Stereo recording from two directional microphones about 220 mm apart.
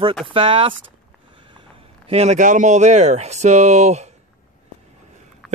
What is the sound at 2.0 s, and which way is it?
Speech, 30° right (ahead or behind).